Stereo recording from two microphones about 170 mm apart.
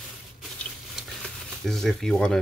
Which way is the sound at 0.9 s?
Centre (ahead or behind).